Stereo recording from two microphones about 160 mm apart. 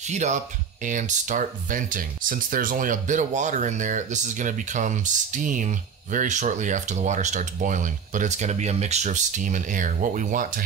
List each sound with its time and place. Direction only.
0.0 s speech: 45° right (ahead or behind)